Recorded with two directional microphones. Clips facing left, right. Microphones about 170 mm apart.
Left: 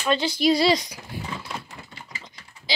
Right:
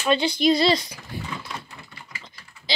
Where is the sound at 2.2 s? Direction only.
10° left (ahead or behind).